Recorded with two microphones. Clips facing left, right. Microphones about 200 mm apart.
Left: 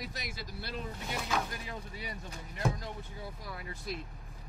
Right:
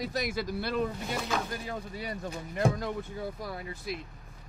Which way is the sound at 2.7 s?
60° right (ahead or behind).